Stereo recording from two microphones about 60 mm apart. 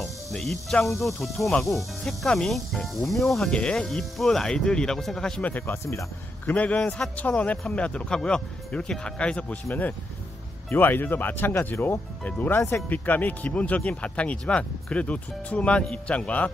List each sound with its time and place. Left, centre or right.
0.0 s music: centre
0.8 s speech: centre
3.4 s speech: centre
5.7 s speech: left
6.4 s speech: left
10.7 s speech: left
12.2 s speech: left
12.5 s speech: left
12.9 s speech: left